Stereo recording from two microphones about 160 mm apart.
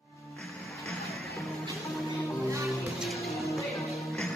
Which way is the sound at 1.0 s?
Centre (ahead or behind).